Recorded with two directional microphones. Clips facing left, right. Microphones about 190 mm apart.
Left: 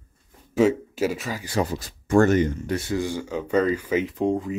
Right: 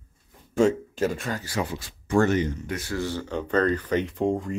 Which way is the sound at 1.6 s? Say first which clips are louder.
Left 3 dB; 40° left (ahead or behind).